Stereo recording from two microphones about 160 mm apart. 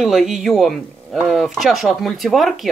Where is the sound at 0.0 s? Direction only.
Centre (ahead or behind).